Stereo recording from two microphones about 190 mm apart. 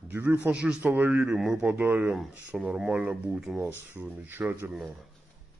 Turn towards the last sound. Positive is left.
turn(degrees=-5)  # may be behind; listen again after turning